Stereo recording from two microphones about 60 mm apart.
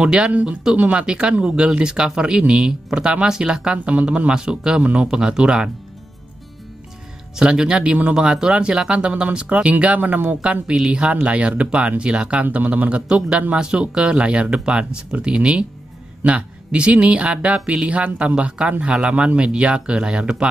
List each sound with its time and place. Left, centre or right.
0.0 s speech: centre
3.7 s speech: right
7.3 s speech: centre